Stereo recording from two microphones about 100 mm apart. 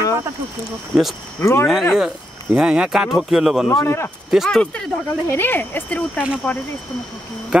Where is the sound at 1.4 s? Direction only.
25° left (ahead or behind).